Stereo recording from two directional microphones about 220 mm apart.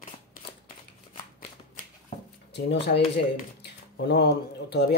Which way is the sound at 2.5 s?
50° left (ahead or behind).